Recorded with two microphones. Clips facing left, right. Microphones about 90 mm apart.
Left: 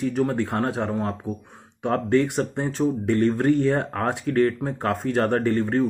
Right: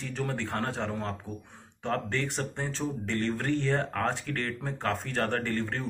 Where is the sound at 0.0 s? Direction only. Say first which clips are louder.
Left 10 dB; 15° left (ahead or behind).